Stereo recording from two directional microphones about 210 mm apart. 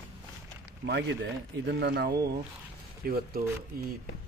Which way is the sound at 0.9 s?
55° right (ahead or behind).